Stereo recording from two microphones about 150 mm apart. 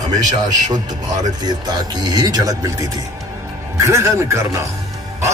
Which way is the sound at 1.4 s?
25° right (ahead or behind).